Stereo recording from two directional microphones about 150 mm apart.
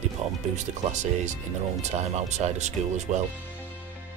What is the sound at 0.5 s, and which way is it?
Speech, 55° right (ahead or behind).